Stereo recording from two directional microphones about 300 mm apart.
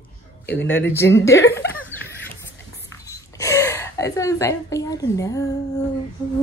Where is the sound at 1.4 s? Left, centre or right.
Left.